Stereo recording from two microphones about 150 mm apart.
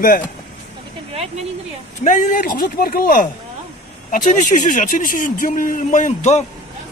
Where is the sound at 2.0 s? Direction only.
55° left (ahead or behind).